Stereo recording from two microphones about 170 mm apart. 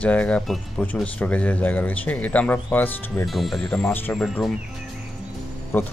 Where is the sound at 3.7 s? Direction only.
10° left (ahead or behind).